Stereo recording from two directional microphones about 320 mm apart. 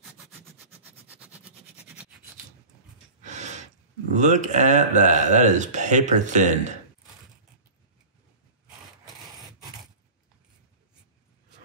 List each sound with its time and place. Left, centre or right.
0.3 s vehicle: centre
3.3 s a sound: right
4.1 s speech: right